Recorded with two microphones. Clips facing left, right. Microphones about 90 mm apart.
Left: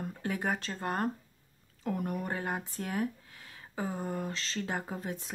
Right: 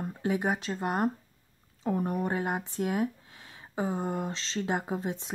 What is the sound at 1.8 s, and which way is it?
Speech, 30° right (ahead or behind).